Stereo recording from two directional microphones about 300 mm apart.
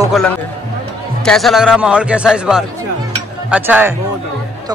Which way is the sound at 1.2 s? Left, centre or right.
Centre.